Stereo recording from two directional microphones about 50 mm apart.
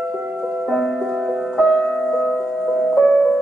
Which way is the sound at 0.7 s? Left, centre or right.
Centre.